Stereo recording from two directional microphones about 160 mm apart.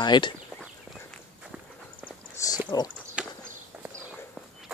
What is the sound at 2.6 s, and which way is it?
Speech, 25° left (ahead or behind).